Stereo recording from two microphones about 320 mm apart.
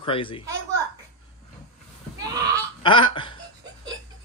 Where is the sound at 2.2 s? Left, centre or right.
Centre.